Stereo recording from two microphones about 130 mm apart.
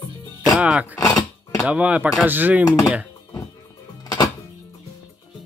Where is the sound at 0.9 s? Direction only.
15° left (ahead or behind).